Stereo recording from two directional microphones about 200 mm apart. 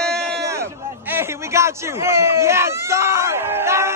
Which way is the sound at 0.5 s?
10° right (ahead or behind).